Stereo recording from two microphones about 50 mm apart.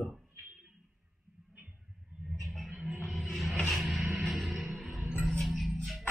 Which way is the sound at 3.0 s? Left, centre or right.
Centre.